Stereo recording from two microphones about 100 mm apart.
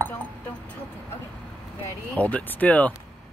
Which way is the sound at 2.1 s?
15° left (ahead or behind).